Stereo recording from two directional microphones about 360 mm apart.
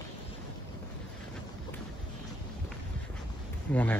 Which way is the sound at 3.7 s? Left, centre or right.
Centre.